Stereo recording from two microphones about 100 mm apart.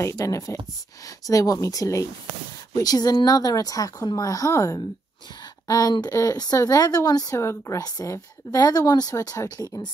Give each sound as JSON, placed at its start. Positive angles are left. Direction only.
{"t": 0.0, "sound": "speech", "side_deg": 35}